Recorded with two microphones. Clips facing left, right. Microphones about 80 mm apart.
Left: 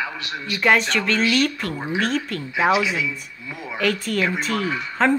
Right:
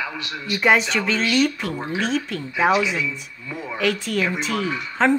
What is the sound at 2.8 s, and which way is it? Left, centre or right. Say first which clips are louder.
Speech: even; centre.